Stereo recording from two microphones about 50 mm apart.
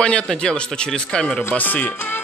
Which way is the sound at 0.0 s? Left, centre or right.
Left.